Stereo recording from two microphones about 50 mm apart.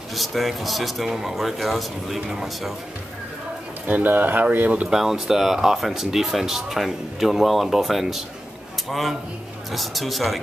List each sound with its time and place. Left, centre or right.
0.1 s speech: centre
2.1 s speech: centre
3.8 s speech: right
4.8 s a man's voice: centre